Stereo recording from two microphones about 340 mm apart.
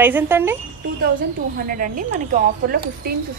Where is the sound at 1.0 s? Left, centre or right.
Right.